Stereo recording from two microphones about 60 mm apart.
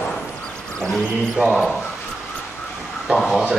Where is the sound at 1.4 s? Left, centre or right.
Centre.